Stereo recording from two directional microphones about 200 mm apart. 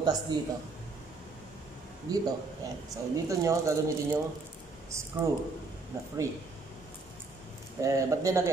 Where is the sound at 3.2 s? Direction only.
15° right (ahead or behind).